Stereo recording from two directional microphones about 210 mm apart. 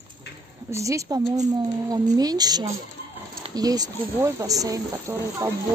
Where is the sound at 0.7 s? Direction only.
15° right (ahead or behind).